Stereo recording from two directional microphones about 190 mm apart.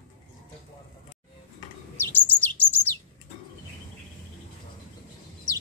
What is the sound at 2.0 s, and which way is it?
Bird, 10° left (ahead or behind).